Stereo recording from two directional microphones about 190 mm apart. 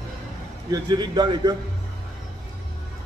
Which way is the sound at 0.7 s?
20° right (ahead or behind).